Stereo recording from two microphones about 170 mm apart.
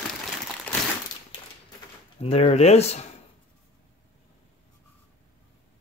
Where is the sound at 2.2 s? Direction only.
35° left (ahead or behind).